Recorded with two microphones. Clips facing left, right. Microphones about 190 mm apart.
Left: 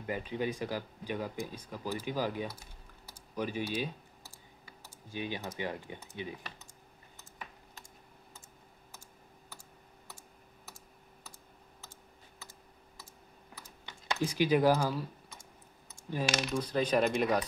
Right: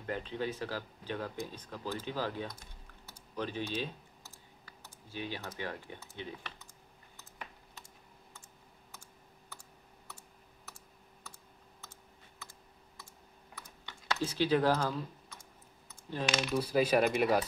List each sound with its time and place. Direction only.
0.0 s speech: 10° left (ahead or behind)
4.6 s typing: 15° left (ahead or behind)
5.6 s speech: 15° left (ahead or behind)
13.6 s typing: 15° left (ahead or behind)
16.1 s speech: 10° left (ahead or behind)
16.5 s speech: 5° right (ahead or behind)